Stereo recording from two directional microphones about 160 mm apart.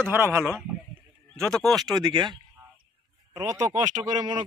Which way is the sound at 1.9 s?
25° right (ahead or behind).